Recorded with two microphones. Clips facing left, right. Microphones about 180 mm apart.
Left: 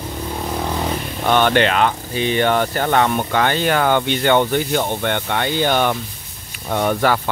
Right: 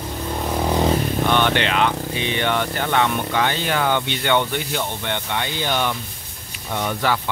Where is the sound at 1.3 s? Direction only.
45° left (ahead or behind).